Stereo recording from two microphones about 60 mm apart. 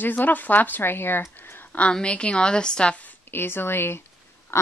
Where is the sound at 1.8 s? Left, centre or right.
Centre.